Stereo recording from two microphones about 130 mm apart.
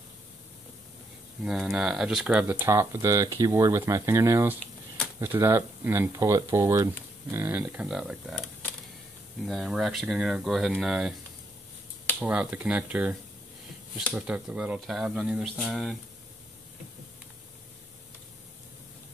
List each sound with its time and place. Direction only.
1.4 s speech: 5° right (ahead or behind)
9.5 s speech: centre (ahead or behind)
12.2 s speech: 10° right (ahead or behind)